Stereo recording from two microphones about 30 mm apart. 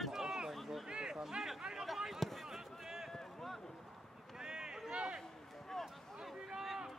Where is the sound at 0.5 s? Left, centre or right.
Centre.